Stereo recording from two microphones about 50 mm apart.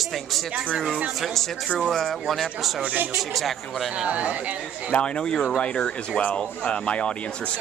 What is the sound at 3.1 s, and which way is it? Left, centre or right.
Speech, centre.